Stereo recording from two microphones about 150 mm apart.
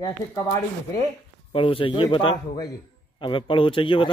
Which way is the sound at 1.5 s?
35° left (ahead or behind).